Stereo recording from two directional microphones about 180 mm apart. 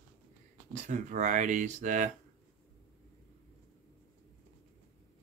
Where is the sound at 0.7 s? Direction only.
45° right (ahead or behind).